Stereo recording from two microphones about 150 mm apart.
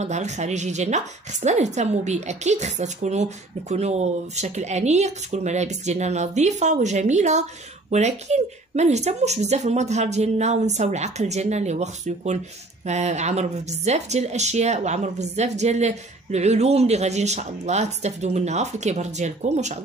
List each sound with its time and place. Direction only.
0.0 s a woman's voice: 50° right (ahead or behind)